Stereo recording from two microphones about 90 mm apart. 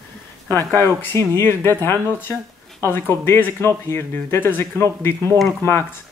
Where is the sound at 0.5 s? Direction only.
30° left (ahead or behind).